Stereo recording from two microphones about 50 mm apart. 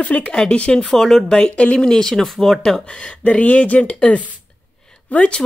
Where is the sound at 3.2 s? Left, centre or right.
Left.